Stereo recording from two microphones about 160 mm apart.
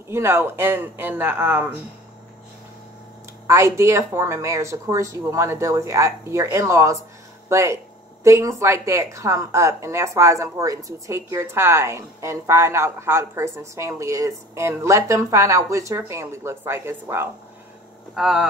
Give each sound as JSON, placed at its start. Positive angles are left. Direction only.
{"t": 0.1, "sound": "speech", "side_deg": -15}
{"t": 3.4, "sound": "speech", "side_deg": -20}
{"t": 18.1, "sound": "speech", "side_deg": -5}